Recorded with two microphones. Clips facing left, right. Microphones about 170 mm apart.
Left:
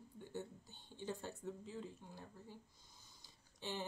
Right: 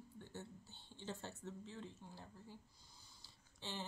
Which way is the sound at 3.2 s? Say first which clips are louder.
Left 4 dB; 15° left (ahead or behind).